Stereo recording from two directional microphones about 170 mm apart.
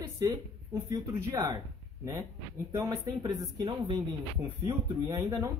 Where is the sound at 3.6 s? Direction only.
30° right (ahead or behind).